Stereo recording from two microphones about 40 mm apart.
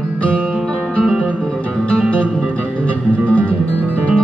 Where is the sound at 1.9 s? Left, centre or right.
Left.